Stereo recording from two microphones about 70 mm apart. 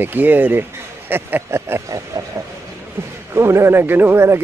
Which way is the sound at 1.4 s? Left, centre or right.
Right.